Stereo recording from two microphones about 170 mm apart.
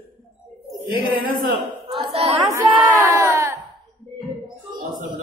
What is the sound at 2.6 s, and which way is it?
Crowd, 15° right (ahead or behind).